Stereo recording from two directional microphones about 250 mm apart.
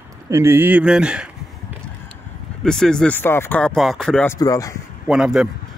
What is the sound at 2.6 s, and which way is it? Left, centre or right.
Speech, centre.